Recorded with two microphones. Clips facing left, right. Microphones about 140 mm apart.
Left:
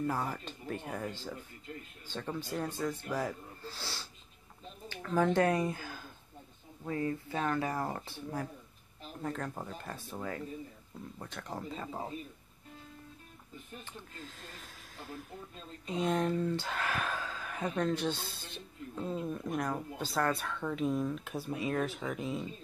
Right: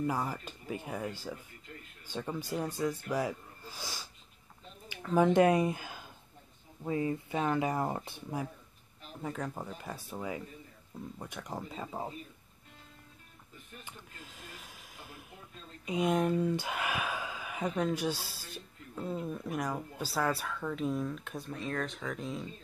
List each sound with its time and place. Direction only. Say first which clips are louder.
0.0 s speech: right 1 dB; 10° right (ahead or behind)
13.8 s speech: left 3 dB; 10° right (ahead or behind)
15.8 s speech: right 2 dB; 10° right (ahead or behind)